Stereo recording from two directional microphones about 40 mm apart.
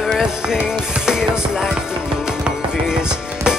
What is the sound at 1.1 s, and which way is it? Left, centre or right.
Music, centre.